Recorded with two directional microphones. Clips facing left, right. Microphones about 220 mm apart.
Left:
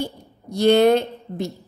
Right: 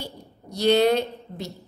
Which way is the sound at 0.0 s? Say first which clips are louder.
Left 9 dB; 50° left (ahead or behind).